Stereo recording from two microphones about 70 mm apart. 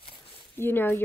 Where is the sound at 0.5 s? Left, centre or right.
Left.